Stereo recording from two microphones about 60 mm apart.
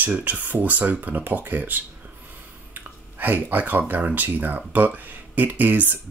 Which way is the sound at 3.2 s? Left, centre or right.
Right.